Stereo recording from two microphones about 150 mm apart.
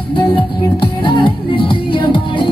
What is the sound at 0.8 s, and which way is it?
Music, 35° left (ahead or behind).